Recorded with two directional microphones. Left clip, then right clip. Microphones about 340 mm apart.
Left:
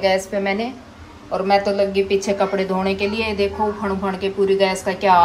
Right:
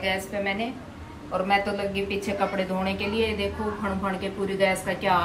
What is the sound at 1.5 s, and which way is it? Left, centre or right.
A woman's voice, centre.